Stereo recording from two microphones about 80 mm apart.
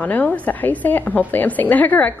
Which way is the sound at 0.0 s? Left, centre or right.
Centre.